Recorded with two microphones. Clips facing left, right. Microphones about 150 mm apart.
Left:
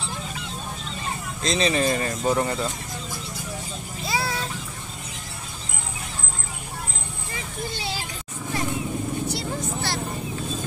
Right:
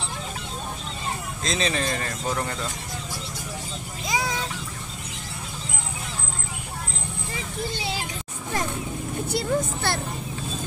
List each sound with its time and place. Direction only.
1.4 s speech: centre (ahead or behind)
4.0 s vehicle: 15° right (ahead or behind)
9.3 s speech: 55° right (ahead or behind)